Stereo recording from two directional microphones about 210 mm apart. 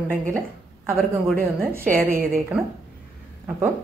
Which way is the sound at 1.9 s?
45° right (ahead or behind).